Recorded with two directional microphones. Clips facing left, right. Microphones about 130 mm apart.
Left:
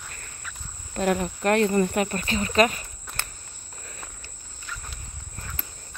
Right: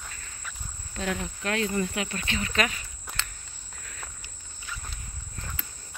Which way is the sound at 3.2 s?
55° left (ahead or behind).